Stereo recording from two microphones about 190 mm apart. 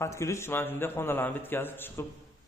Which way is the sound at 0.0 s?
15° left (ahead or behind).